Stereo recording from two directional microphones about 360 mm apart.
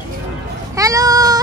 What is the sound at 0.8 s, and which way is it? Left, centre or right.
Speech, centre.